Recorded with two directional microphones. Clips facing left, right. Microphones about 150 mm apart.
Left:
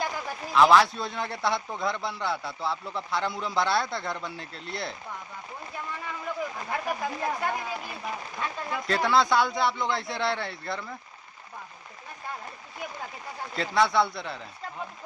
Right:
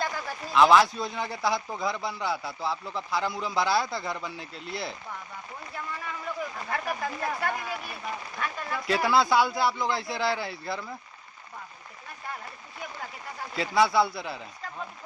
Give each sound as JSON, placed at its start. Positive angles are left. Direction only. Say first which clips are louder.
{"t": 0.5, "sound": "a man's voice", "louder": "even", "side_deg": 0}
{"t": 6.7, "sound": "speech", "louder": "even", "side_deg": 15}
{"t": 8.8, "sound": "a man's voice", "louder": "even", "side_deg": -5}
{"t": 13.6, "sound": "a man's voice", "louder": "right 1 dB", "side_deg": -5}